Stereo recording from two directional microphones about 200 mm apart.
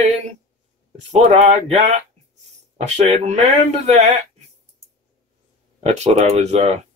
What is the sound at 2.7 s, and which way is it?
Speech, 30° right (ahead or behind).